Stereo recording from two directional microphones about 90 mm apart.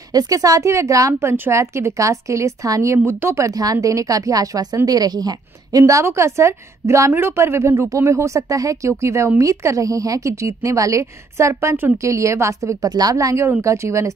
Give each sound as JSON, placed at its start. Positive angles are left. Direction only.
{"t": 0.1, "sound": "a woman's voice", "side_deg": -45}
{"t": 1.3, "sound": "a woman's voice", "side_deg": -25}